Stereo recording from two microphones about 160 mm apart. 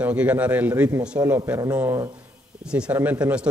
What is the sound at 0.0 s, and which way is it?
A man's voice, 10° right (ahead or behind).